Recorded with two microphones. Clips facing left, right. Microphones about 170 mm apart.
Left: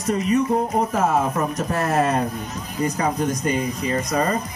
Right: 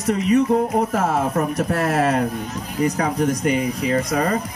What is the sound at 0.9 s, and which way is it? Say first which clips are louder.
Speech: even; 65° right (ahead or behind).